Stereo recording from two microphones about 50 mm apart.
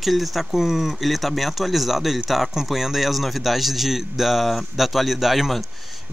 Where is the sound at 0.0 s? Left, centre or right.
Centre.